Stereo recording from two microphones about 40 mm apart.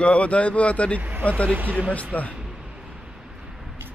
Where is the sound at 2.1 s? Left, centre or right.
Left.